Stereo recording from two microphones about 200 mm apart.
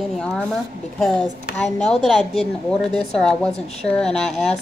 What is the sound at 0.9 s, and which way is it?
A woman's voice, centre (ahead or behind).